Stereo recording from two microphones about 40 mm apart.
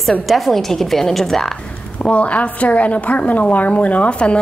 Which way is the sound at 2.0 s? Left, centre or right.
Left.